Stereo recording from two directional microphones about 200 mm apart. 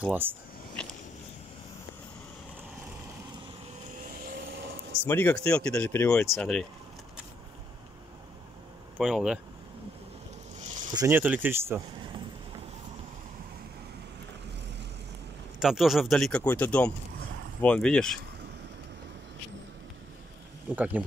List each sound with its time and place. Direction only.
0.0 s speech: 10° right (ahead or behind)
4.1 s vehicle: 45° right (ahead or behind)
5.0 s speech: 10° left (ahead or behind)
6.2 s speech: centre (ahead or behind)
8.9 s speech: centre (ahead or behind)
10.6 s a sound: 40° right (ahead or behind)
10.9 s speech: 15° right (ahead or behind)
15.6 s speech: centre (ahead or behind)
20.7 s speech: 10° right (ahead or behind)